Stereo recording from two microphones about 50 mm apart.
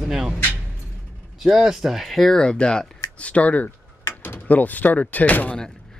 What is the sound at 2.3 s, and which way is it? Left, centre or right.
Speech, centre.